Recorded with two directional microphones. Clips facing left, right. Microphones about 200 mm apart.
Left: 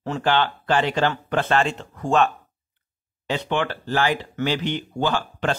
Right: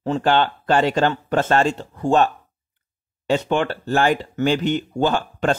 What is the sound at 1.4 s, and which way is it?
Speech, 40° right (ahead or behind).